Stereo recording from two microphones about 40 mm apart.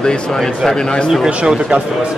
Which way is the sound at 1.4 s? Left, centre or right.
Right.